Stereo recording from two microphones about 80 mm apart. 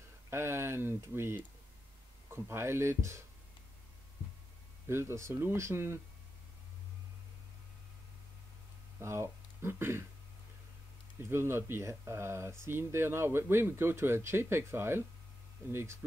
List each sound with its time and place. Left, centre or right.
0.3 s speech: right
4.8 s speech: right
9.0 s speech: right
11.1 s speech: right